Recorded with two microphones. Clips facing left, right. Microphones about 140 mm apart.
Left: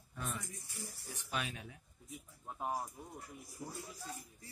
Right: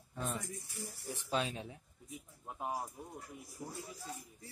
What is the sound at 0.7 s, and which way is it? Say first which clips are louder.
Speech: right 5 dB; 25° right (ahead or behind).